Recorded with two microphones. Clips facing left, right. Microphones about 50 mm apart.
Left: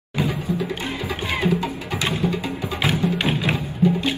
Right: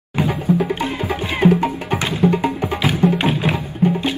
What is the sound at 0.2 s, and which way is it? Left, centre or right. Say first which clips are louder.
Music: right 6 dB; right.